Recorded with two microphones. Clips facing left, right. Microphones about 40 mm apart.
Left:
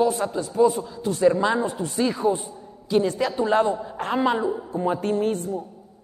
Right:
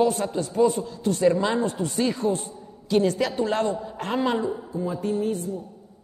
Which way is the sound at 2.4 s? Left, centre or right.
Centre.